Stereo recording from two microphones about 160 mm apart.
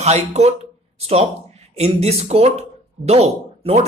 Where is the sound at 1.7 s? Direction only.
40° right (ahead or behind).